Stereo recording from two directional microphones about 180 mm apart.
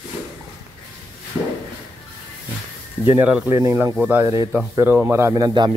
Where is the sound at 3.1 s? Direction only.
10° right (ahead or behind).